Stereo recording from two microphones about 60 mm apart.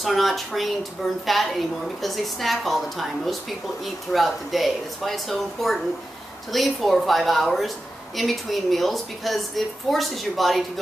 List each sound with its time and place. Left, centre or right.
0.0 s a woman's voice: centre